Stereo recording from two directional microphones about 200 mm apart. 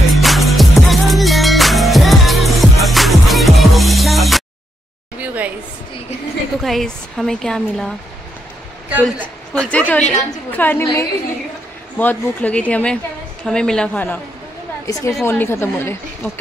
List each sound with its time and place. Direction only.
0.1 s music: centre (ahead or behind)
5.2 s a sound: 10° right (ahead or behind)
6.6 s speech: centre (ahead or behind)
9.0 s a woman's voice: 5° left (ahead or behind)